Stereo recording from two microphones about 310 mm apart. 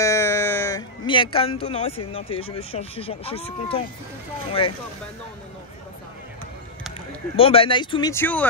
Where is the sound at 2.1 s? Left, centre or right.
Centre.